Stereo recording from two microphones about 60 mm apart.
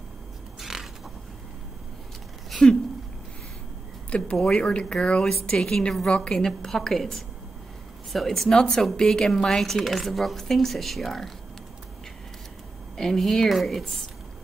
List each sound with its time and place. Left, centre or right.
0.6 s a sound: centre
2.5 s speech: centre
4.1 s a woman's voice: centre
12.9 s speech: centre